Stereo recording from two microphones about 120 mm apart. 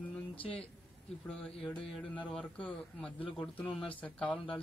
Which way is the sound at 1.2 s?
10° left (ahead or behind).